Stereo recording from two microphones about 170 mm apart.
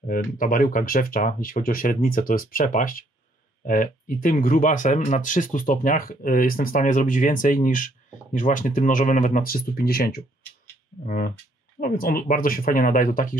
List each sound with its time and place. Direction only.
0.0 s speech: 55° left (ahead or behind)